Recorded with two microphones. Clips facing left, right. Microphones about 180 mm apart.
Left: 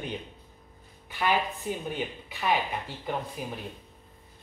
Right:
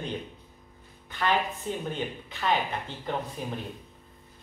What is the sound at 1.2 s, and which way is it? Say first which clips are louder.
Speech: even; 10° left (ahead or behind).